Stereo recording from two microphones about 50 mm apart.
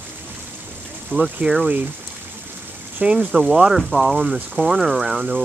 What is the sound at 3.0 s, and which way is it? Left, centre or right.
Speech, right.